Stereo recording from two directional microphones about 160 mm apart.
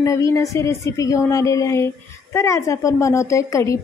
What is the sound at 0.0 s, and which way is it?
A woman's voice, 20° left (ahead or behind).